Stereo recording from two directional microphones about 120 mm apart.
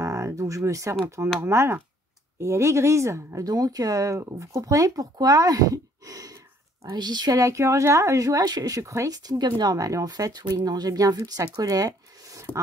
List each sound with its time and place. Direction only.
0.0 s a sound: 25° right (ahead or behind)
1.0 s speech: 20° right (ahead or behind)
12.5 s speech: 15° left (ahead or behind)